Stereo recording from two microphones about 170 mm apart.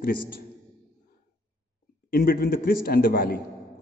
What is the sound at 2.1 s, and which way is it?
A man's voice, 65° left (ahead or behind).